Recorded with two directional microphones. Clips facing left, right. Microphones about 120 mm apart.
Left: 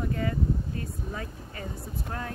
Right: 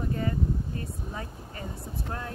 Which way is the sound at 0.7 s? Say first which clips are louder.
Left 1 dB; 30° right (ahead or behind).